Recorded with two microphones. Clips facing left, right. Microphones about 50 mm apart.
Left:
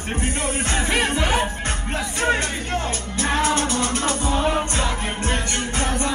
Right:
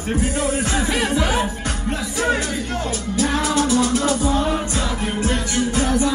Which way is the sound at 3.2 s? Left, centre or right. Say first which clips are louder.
Right 1 dB; left.